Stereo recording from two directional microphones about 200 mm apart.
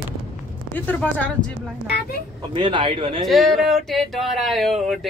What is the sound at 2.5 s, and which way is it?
Speech, 25° right (ahead or behind).